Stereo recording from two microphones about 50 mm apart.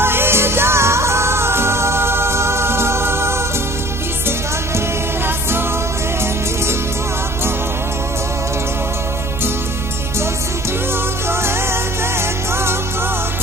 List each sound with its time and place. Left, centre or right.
0.0 s music: right
4.7 s music: right
11.2 s music: right